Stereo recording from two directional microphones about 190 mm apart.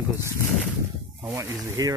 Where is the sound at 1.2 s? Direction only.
15° right (ahead or behind).